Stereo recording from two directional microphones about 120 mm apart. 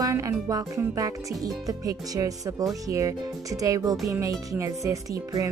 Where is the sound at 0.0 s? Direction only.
25° right (ahead or behind).